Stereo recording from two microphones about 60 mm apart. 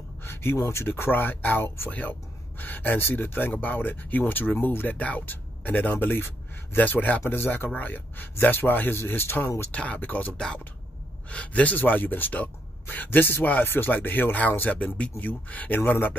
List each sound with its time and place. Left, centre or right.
0.2 s speech: left
1.9 s speech: left
9.7 s speech: left
10.3 s speech: centre; by 16.2 s left